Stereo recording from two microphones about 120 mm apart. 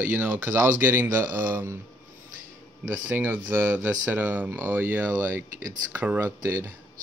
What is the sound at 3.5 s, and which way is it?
Speech, 15° right (ahead or behind).